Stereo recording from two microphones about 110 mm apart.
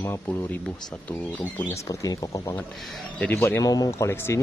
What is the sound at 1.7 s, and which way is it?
Speech, 30° left (ahead or behind).